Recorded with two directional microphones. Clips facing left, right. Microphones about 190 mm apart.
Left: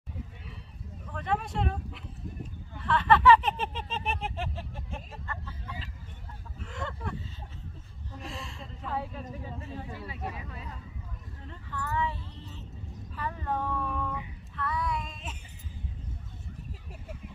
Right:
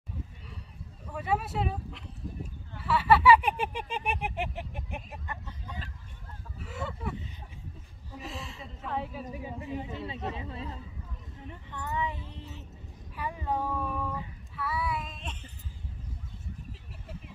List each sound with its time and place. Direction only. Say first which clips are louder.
1.1 s a woman's voice: right 1 dB; 5° right (ahead or behind)
2.8 s a sound: even; 10° right (ahead or behind)
6.6 s a woman's voice: right 1 dB; 5° right (ahead or behind)
9.3 s speech: right 3 dB; 15° right (ahead or behind)
11.4 s vehicle: left 1 dB; 20° right (ahead or behind)
13.1 s a sound: right 1 dB; 10° right (ahead or behind)
14.6 s child singing: left 1 dB; 5° right (ahead or behind)